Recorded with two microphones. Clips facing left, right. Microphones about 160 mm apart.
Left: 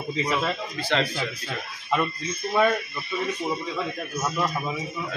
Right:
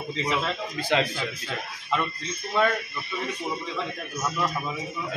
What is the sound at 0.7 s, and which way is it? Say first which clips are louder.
Speech: right 2 dB; 15° right (ahead or behind).